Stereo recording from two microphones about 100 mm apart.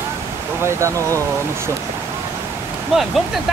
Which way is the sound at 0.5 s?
25° right (ahead or behind).